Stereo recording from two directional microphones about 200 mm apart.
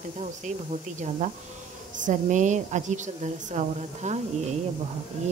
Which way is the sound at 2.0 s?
40° right (ahead or behind).